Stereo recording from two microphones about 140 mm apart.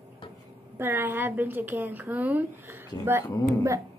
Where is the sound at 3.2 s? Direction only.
25° left (ahead or behind).